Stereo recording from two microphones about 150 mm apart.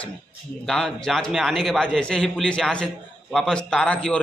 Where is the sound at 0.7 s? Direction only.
5° left (ahead or behind).